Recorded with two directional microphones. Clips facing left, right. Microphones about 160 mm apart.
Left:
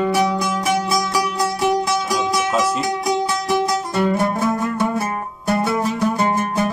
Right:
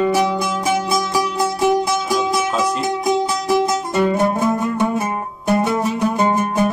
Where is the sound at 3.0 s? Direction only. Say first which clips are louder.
Right 4 dB; 15° right (ahead or behind).